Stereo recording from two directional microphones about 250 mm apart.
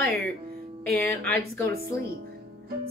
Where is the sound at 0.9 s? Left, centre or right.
Centre.